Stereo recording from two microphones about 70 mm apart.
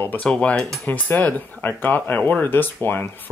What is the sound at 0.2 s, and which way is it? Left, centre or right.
Speech, centre.